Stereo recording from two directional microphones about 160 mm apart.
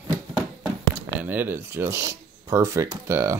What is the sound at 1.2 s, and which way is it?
Speech, 10° right (ahead or behind).